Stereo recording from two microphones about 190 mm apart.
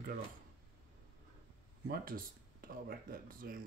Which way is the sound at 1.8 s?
50° right (ahead or behind).